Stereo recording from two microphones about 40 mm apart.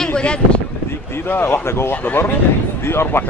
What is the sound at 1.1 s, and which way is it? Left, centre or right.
Speech, left.